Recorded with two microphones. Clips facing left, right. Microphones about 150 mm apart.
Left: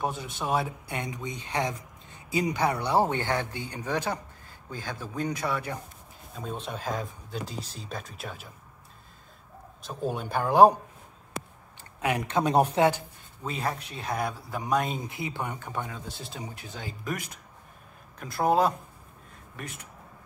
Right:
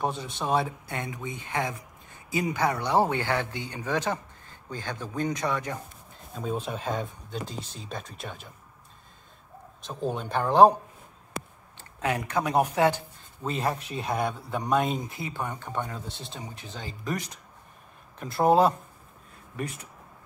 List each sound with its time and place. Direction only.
0.0 s speech: 5° left (ahead or behind)
0.8 s speech: 20° left (ahead or behind)
3.5 s speech: 15° right (ahead or behind)
3.8 s speech: 15° left (ahead or behind)
6.3 s speech: centre (ahead or behind)
9.8 s speech: 10° left (ahead or behind)
12.0 s speech: 20° left (ahead or behind)
13.4 s speech: centre (ahead or behind)
15.0 s speech: 20° left (ahead or behind); by 18.8 s 5° right (ahead or behind)